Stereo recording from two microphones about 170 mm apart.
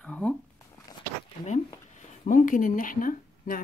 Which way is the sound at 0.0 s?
5° left (ahead or behind).